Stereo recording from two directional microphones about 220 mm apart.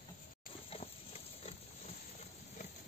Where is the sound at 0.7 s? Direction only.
25° left (ahead or behind).